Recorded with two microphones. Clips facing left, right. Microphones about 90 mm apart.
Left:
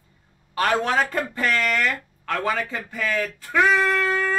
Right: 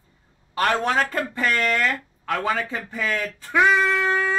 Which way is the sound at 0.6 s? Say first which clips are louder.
Even; 5° left (ahead or behind).